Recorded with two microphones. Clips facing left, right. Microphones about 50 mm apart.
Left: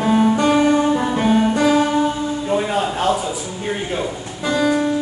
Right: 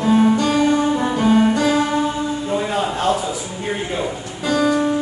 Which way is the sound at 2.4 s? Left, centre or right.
Centre.